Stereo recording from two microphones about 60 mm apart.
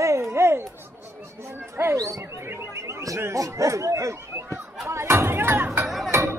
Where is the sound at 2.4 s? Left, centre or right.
Right.